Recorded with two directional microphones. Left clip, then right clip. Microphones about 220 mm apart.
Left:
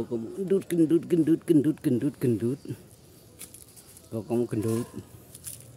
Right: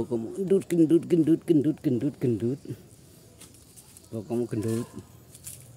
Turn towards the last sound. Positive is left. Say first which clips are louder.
# left 1 dB
turn(degrees=0)  # may be behind; listen again after turning